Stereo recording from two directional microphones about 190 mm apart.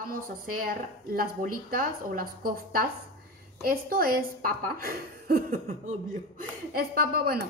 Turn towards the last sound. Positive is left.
turn(degrees=-55)  # may be behind; listen again after turning